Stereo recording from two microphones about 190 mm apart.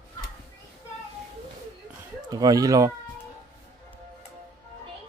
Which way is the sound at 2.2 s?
20° right (ahead or behind).